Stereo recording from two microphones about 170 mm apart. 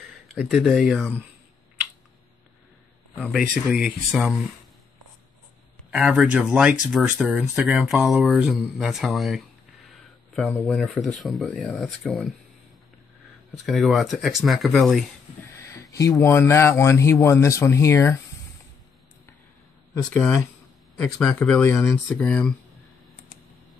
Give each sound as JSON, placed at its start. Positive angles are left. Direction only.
{"t": 0.3, "sound": "speech", "side_deg": 0}
{"t": 3.3, "sound": "speech", "side_deg": -5}
{"t": 5.9, "sound": "speech", "side_deg": -5}
{"t": 10.6, "sound": "speech", "side_deg": 5}
{"t": 13.7, "sound": "speech", "side_deg": 0}
{"t": 15.7, "sound": "speech", "side_deg": 20}
{"t": 20.0, "sound": "speech", "side_deg": 5}